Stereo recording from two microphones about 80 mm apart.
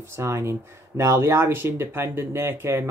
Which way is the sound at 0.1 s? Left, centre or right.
Right.